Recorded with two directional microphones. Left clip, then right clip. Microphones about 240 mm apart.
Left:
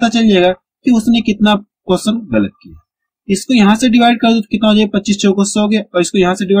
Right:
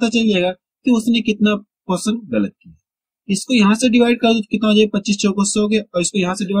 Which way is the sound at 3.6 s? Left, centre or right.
Centre.